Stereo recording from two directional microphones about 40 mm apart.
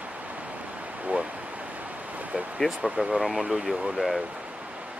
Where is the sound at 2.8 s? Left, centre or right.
Right.